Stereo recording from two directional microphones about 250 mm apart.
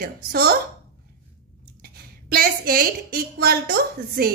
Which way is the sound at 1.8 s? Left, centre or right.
Right.